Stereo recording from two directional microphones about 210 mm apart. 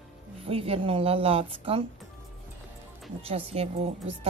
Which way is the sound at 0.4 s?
25° right (ahead or behind).